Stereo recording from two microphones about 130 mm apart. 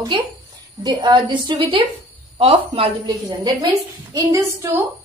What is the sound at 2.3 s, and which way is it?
Speech, 45° right (ahead or behind).